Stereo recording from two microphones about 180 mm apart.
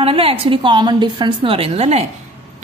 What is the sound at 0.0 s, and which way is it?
A woman's voice, 30° right (ahead or behind).